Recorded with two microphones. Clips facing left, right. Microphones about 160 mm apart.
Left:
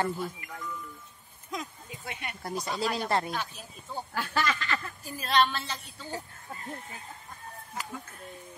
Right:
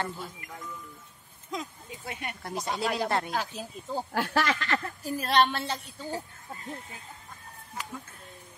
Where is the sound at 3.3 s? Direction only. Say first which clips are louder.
Right 3 dB; 90° right.